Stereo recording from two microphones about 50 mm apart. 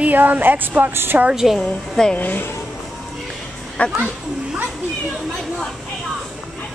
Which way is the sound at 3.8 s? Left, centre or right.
Left.